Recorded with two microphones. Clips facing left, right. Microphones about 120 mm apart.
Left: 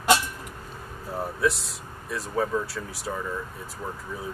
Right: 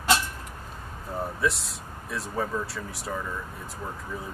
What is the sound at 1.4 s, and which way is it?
Speech, centre (ahead or behind).